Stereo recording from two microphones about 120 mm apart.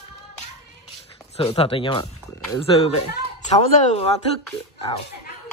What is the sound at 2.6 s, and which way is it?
Speech, 55° left (ahead or behind).